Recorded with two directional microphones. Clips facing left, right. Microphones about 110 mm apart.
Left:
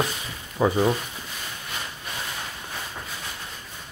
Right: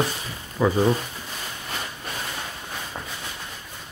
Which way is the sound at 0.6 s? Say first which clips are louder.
Even; 15° left (ahead or behind).